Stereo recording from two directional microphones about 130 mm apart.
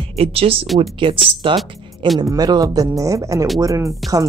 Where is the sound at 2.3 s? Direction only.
30° right (ahead or behind).